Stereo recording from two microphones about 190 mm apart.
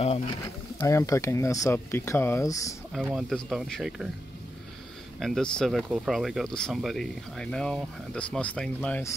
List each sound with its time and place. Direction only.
0.7 s speech: 15° left (ahead or behind)
2.9 s speech: centre (ahead or behind)
5.2 s speech: 5° left (ahead or behind)